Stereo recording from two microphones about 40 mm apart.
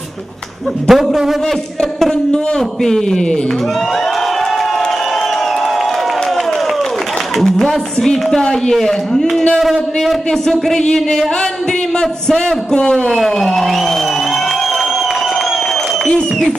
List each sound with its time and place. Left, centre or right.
0.8 s a man's voice: centre
2.3 s speech: centre
7.5 s speech: centre
9.6 s speech: centre
10.4 s a man's voice: centre
13.1 s speech: centre